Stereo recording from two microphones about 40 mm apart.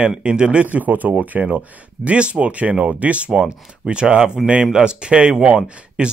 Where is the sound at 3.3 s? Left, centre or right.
Centre.